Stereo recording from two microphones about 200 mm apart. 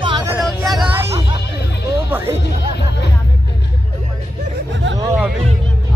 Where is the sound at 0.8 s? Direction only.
10° right (ahead or behind).